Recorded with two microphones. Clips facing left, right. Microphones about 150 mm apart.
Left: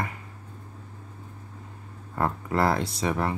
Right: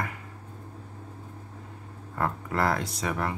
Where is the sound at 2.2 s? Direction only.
30° left (ahead or behind).